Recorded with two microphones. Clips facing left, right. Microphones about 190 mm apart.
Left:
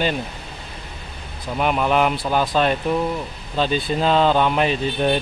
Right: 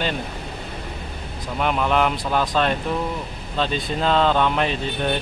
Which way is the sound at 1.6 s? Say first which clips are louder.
Left 2 dB; 5° left (ahead or behind).